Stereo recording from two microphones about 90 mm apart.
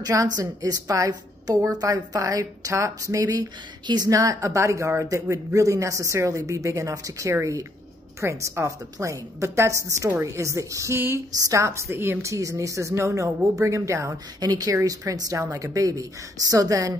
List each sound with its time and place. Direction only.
0.0 s a woman's voice: 40° right (ahead or behind)
3.8 s a woman's voice: 55° right (ahead or behind)
4.1 s a woman's voice: 40° right (ahead or behind)